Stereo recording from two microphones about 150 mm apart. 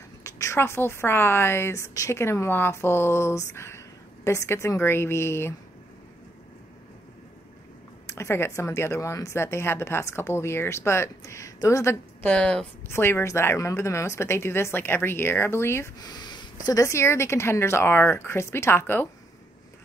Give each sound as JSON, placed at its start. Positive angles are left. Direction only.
{"t": 0.2, "sound": "a woman's voice", "side_deg": 20}
{"t": 8.1, "sound": "a woman's voice", "side_deg": 20}